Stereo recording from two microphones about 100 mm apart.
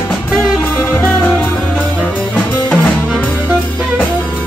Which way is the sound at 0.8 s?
20° left (ahead or behind).